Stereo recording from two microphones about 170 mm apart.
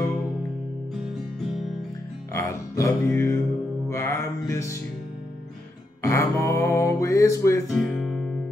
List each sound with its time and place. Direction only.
2.3 s music: 15° left (ahead or behind)
6.0 s music: 15° left (ahead or behind)
7.7 s music: centre (ahead or behind)